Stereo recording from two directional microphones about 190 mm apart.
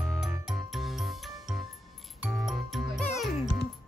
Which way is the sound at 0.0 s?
Centre (ahead or behind).